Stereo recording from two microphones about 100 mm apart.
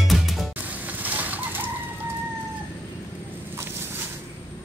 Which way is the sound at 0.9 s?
15° right (ahead or behind).